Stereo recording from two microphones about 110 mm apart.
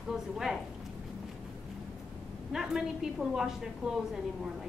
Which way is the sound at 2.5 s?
5° right (ahead or behind).